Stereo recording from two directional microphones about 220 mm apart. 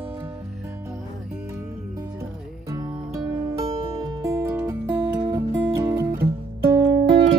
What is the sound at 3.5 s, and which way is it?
Music, 15° right (ahead or behind).